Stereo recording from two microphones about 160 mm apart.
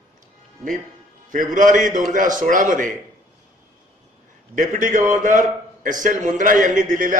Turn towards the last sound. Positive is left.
turn(degrees=-55)  # may be behind; listen again after turning